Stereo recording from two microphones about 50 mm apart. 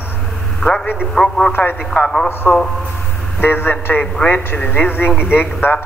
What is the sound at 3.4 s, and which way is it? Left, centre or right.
Speech, left.